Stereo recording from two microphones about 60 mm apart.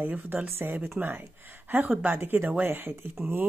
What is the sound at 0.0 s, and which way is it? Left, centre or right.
Speech, right.